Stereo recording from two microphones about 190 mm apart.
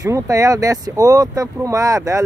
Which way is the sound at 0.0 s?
15° right (ahead or behind).